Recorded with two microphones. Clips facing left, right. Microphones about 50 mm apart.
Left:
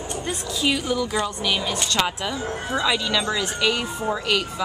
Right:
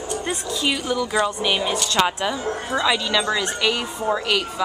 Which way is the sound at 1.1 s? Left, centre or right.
Centre.